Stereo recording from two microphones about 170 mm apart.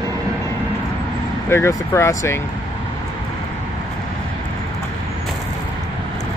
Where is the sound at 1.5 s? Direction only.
15° left (ahead or behind).